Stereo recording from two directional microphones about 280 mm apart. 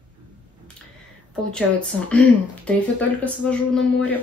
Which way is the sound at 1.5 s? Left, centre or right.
Centre.